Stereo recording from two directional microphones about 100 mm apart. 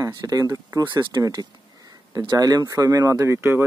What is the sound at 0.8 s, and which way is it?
Speech, 45° right (ahead or behind).